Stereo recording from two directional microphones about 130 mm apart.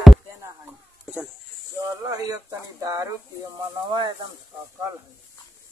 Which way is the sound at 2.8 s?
30° right (ahead or behind).